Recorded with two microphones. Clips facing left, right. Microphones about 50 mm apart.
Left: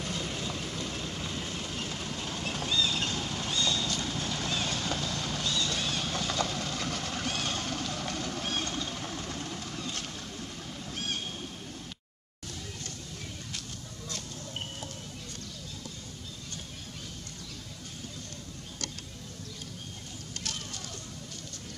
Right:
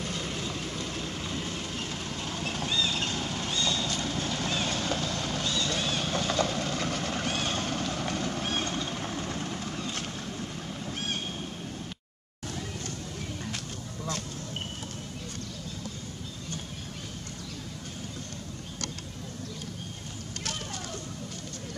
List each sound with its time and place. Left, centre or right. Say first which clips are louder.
0.0 s train: right 1 dB; centre
2.7 s vehicle: left 1 dB; centre; by 10.0 s right
10.9 s a sound: right 1 dB; right